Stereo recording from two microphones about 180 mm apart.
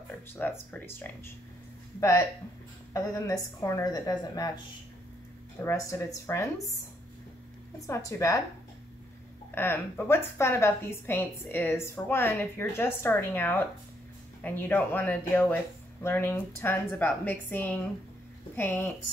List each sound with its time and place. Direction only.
0.4 s a woman's voice: 10° left (ahead or behind)
5.6 s a woman's voice: 15° left (ahead or behind)
7.8 s a woman's voice: 15° left (ahead or behind)
9.6 s a woman's voice: 10° left (ahead or behind)